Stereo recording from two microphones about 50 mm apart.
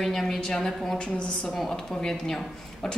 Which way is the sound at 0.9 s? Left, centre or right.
Centre.